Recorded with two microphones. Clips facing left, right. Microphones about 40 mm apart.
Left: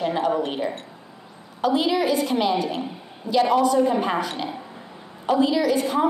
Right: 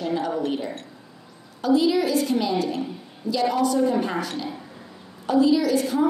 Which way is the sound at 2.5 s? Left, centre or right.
Left.